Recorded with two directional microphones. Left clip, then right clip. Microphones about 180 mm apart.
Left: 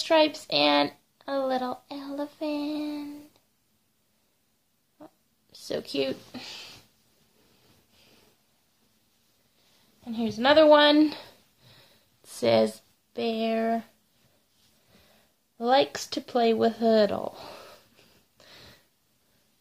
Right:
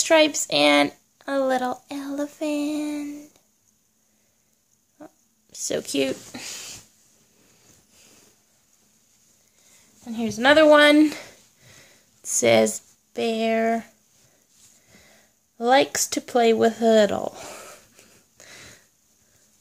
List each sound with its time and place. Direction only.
0.0 s speech: 35° right (ahead or behind)
4.9 s dog: 40° right (ahead or behind)
5.9 s speech: 35° right (ahead or behind)
10.0 s speech: 35° right (ahead or behind)
14.9 s a sound: 35° right (ahead or behind)